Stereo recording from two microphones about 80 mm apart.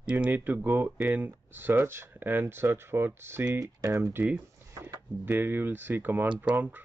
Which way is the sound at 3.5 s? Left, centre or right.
Right.